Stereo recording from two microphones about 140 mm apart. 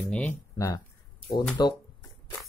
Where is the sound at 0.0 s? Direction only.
10° left (ahead or behind).